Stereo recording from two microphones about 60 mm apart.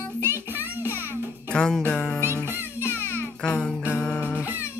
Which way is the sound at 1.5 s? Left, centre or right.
Centre.